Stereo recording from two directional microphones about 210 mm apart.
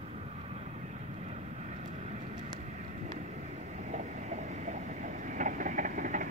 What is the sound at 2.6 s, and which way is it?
Train, 35° right (ahead or behind).